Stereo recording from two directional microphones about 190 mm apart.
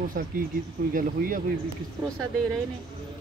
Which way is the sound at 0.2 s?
45° right (ahead or behind).